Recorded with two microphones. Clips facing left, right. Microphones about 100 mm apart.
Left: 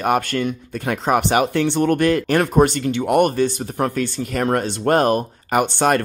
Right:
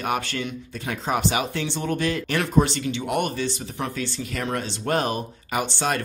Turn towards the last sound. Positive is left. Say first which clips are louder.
# left 8 dB
turn(degrees=55)  # may be behind; listen again after turning